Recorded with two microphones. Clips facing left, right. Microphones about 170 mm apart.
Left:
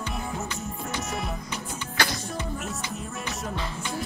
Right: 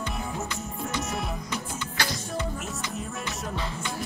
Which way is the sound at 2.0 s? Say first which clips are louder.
Left 3 dB; 60° left (ahead or behind).